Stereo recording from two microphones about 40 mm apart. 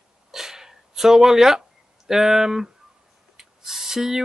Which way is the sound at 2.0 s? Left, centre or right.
Centre.